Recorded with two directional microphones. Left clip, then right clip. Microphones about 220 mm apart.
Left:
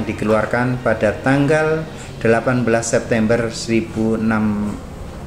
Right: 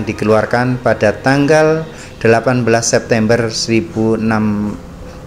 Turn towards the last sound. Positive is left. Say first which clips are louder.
# right 4 dB
turn(degrees=-35)  # may be behind; listen again after turning